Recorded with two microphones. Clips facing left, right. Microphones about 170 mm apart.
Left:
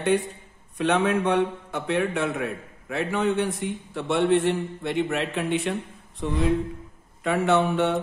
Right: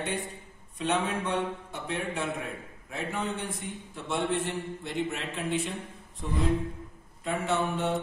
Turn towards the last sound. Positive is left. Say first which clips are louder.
# left 7 dB
turn(degrees=75)  # may be behind; listen again after turning